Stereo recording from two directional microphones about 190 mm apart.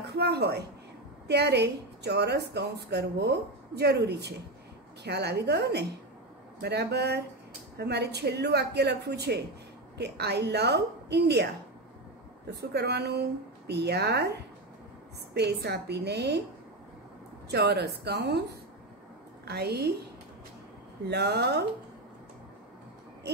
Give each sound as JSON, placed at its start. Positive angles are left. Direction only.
{"t": 0.0, "sound": "a woman's voice", "side_deg": -60}
{"t": 12.5, "sound": "a woman's voice", "side_deg": -60}
{"t": 15.3, "sound": "a woman's voice", "side_deg": -60}
{"t": 17.5, "sound": "a woman's voice", "side_deg": -60}
{"t": 19.4, "sound": "a woman's voice", "side_deg": -60}
{"t": 21.1, "sound": "a woman's voice", "side_deg": -60}